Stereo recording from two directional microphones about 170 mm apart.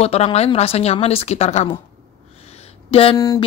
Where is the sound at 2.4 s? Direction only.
40° left (ahead or behind).